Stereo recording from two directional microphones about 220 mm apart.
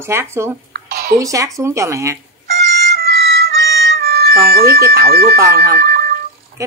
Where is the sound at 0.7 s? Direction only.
40° right (ahead or behind).